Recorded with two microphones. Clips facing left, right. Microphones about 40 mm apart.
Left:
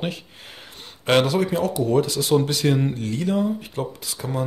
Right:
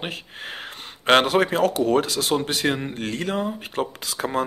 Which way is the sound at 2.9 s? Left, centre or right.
Right.